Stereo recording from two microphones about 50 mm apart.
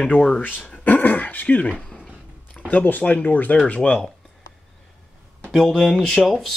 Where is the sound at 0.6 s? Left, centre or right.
Left.